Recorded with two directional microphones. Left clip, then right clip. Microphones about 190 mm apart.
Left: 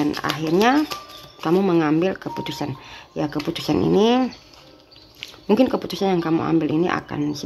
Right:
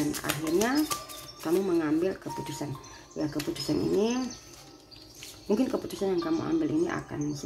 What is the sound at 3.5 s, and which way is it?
Speech, 35° left (ahead or behind).